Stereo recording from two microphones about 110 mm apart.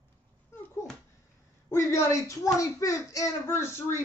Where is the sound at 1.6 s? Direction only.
25° left (ahead or behind).